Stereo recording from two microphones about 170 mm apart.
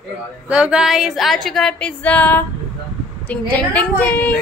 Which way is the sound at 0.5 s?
5° right (ahead or behind).